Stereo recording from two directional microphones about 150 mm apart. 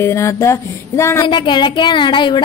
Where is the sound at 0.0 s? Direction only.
20° left (ahead or behind).